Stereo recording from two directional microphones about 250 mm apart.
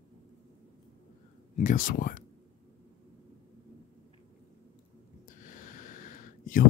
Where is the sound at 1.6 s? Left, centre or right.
Left.